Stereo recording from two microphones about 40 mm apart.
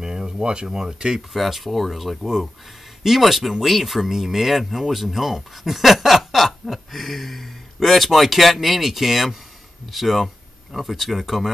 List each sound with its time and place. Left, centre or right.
0.0 s speech: centre
1.3 s speech: centre
2.2 s speech: centre